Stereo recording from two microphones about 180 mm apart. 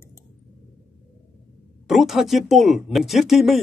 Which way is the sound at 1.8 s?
Centre (ahead or behind).